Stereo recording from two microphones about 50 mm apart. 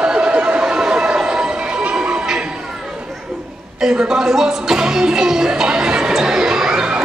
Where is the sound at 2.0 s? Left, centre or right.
Centre.